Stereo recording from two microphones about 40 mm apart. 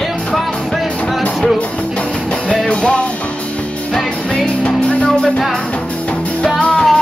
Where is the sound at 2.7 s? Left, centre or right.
Left.